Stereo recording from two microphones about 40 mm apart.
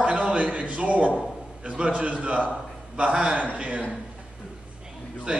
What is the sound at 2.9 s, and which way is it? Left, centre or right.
Mantra, right.